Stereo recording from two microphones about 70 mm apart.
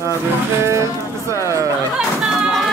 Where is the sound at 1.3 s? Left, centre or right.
Right.